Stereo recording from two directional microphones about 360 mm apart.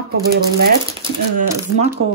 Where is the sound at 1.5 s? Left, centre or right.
Centre.